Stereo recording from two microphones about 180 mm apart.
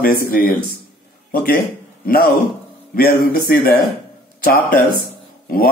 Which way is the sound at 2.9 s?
55° left (ahead or behind).